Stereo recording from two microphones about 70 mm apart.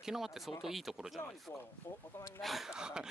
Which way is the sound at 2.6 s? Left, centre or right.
Centre.